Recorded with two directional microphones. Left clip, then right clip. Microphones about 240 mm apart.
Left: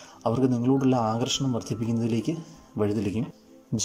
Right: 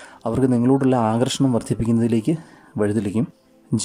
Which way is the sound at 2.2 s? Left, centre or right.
Right.